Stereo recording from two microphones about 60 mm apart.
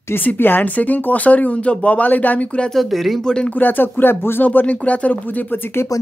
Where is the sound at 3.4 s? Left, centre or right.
Left.